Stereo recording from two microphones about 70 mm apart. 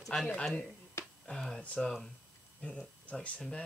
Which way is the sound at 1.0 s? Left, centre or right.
Left.